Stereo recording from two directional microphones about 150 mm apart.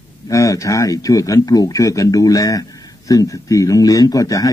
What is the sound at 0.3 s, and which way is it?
Speech, 20° left (ahead or behind).